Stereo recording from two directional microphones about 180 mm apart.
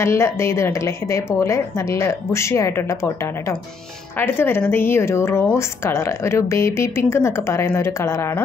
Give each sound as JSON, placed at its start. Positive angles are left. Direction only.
{"t": 0.0, "sound": "a woman's voice", "side_deg": 15}